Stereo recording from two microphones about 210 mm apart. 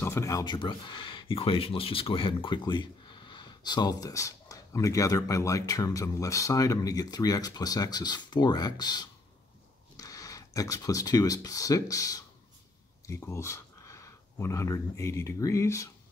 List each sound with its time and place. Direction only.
0.0 s speech: 15° left (ahead or behind)